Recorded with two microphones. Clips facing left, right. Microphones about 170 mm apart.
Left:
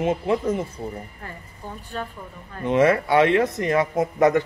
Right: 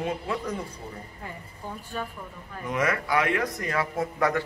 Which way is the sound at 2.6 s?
30° left (ahead or behind).